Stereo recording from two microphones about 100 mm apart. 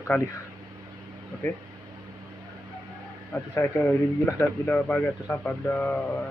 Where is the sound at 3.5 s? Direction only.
25° left (ahead or behind).